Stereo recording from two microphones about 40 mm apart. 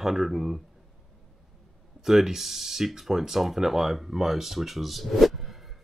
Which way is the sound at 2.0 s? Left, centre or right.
Centre.